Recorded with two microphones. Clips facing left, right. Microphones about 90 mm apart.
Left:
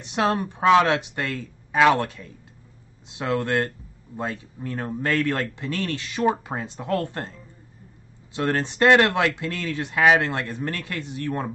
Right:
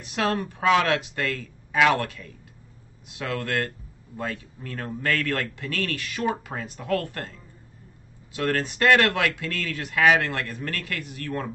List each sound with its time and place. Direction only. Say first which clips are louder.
0.0 s speech: left 3 dB; 20° left (ahead or behind)